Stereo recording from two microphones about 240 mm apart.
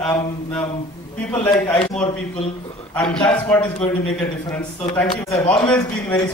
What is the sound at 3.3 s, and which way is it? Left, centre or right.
A man's voice, centre.